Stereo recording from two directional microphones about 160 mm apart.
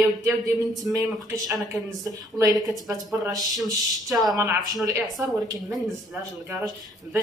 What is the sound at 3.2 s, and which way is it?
Speech, 25° right (ahead or behind).